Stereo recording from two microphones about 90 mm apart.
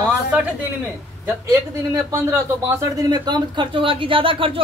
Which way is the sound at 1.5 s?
35° right (ahead or behind).